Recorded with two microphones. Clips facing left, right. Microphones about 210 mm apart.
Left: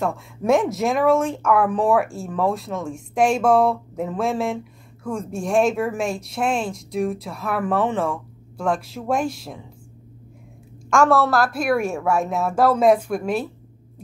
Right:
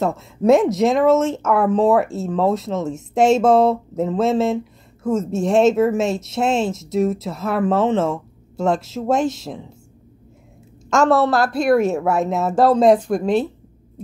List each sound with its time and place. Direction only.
0.0 s a woman's voice: 20° right (ahead or behind)
10.9 s a woman's voice: 20° right (ahead or behind)
12.7 s speech: 10° left (ahead or behind)
13.2 s a woman's voice: 25° right (ahead or behind)